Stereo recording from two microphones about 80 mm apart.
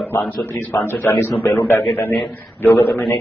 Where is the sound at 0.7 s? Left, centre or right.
Left.